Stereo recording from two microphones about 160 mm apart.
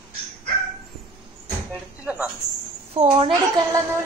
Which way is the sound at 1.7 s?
10° right (ahead or behind).